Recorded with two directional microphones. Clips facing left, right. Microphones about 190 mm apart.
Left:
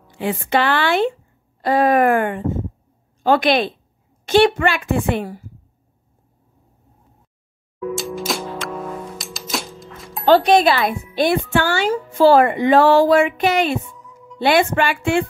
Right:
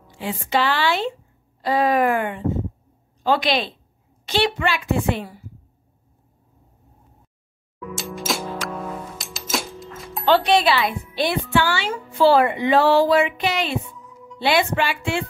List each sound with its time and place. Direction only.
0.5 s speech: 55° left (ahead or behind)
7.9 s music: centre (ahead or behind)
10.2 s speech: 45° left (ahead or behind)